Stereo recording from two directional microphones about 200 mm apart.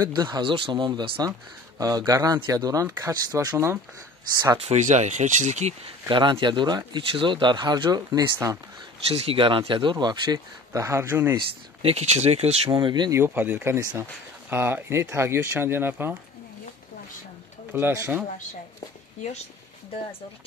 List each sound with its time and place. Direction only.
0.0 s speech: 20° right (ahead or behind)
4.6 s speech: 35° right (ahead or behind)
6.0 s speech: 25° right (ahead or behind)
9.1 s speech: 30° right (ahead or behind); by 11.3 s 10° right (ahead or behind)
11.3 s speech: 30° right (ahead or behind)
12.7 s speech: 20° right (ahead or behind)
17.7 s speech: 10° right (ahead or behind)